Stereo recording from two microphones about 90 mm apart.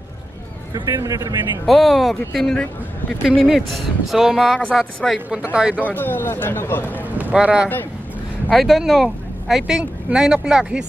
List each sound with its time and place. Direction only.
0.8 s a man's voice: 40° right (ahead or behind)
1.7 s speech: centre (ahead or behind)
3.4 s speech: 5° right (ahead or behind)
5.3 s speech: 10° right (ahead or behind)
5.8 s a man's voice: 20° left (ahead or behind)
7.3 s speech: 10° right (ahead or behind)